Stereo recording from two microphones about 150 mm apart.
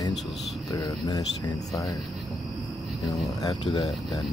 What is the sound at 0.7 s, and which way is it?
Speech, 25° left (ahead or behind).